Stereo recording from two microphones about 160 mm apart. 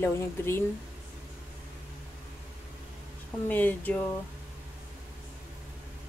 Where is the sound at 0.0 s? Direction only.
15° left (ahead or behind).